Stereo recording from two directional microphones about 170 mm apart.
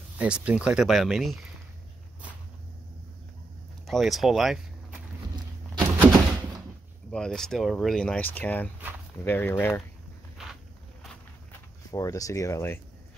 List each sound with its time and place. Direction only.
0.2 s speech: 5° right (ahead or behind)
3.8 s speech: centre (ahead or behind)
5.3 s a sound: 25° right (ahead or behind)
7.1 s speech: 5° left (ahead or behind)
10.3 s walk: centre (ahead or behind)
11.9 s speech: 20° left (ahead or behind)